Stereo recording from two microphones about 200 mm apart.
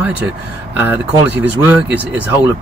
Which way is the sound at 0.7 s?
10° right (ahead or behind).